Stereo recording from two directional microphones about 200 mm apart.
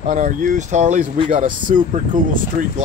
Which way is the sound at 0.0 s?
40° right (ahead or behind).